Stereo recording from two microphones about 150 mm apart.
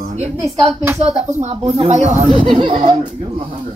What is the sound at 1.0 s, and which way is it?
Speech, 45° right (ahead or behind).